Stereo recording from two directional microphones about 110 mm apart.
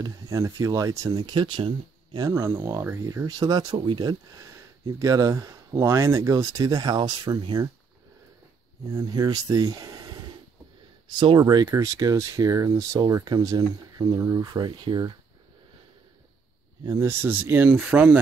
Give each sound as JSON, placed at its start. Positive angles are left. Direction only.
{"t": 0.0, "sound": "speech", "side_deg": -30}
{"t": 2.1, "sound": "speech", "side_deg": -35}
{"t": 4.4, "sound": "speech", "side_deg": -30}
{"t": 8.9, "sound": "speech", "side_deg": -35}
{"t": 11.1, "sound": "speech", "side_deg": -45}
{"t": 16.8, "sound": "speech", "side_deg": -30}
{"t": 17.2, "sound": "speech", "side_deg": -20}